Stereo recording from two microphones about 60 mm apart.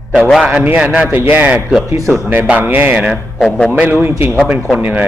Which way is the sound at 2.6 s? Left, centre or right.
Right.